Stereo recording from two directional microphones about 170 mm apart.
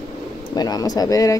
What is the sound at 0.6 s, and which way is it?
Speech, 20° left (ahead or behind).